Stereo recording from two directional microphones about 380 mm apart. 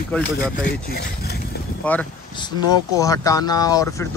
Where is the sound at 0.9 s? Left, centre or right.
Left.